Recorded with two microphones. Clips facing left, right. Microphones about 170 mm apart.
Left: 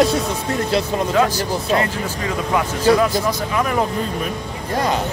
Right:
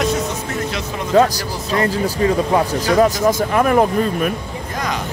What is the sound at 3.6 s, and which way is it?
Speech, 55° right (ahead or behind).